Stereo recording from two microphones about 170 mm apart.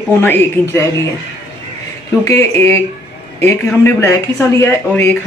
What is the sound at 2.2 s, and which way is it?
Speech, 15° left (ahead or behind).